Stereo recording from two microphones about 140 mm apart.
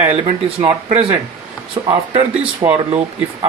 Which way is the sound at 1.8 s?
30° right (ahead or behind).